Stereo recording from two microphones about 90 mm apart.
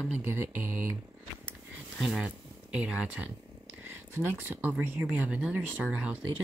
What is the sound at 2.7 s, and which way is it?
Speech, 10° right (ahead or behind).